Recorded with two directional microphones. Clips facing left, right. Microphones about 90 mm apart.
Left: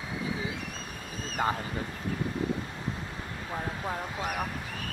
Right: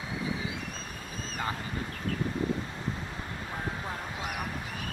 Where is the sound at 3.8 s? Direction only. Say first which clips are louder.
Left 3 dB; 25° left (ahead or behind).